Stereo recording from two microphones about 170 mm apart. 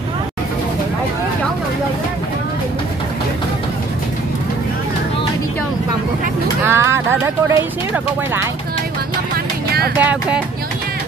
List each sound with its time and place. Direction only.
6.6 s a sound: 15° right (ahead or behind)
7.4 s speech: 15° right (ahead or behind)
9.9 s speech: 10° right (ahead or behind)